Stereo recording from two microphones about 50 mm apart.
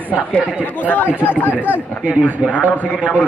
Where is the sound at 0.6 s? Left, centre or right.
Left.